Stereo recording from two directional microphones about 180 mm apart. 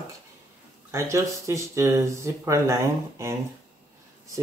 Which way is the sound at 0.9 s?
15° right (ahead or behind).